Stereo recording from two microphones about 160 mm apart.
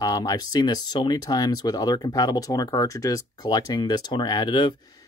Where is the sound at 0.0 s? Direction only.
25° left (ahead or behind).